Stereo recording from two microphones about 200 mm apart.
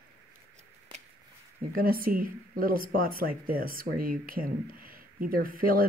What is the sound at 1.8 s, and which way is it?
Speech, 45° right (ahead or behind).